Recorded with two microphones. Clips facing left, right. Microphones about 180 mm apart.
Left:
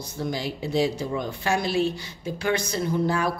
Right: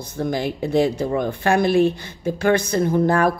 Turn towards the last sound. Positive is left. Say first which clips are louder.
# right 6 dB
turn(degrees=-55)  # may be behind; listen again after turning